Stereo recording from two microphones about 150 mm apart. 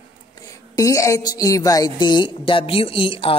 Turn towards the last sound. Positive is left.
turn(degrees=35)  # may be behind; listen again after turning